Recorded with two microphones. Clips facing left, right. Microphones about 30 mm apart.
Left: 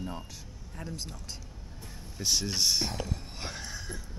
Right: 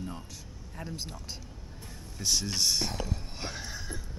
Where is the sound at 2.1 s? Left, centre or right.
Centre.